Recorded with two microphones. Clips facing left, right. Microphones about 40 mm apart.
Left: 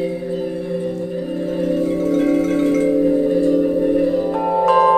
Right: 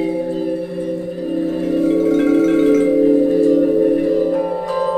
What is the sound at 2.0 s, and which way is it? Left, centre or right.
Marimba, right.